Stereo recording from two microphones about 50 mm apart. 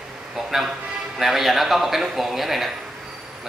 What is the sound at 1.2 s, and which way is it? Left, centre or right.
A man's voice, centre.